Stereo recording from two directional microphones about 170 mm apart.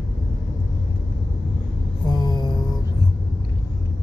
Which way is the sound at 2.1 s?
25° left (ahead or behind).